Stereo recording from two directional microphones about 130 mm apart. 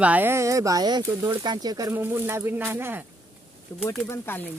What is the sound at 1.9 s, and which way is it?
Speech, 15° right (ahead or behind).